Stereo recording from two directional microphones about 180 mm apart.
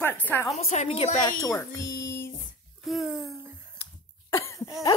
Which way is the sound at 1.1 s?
20° left (ahead or behind).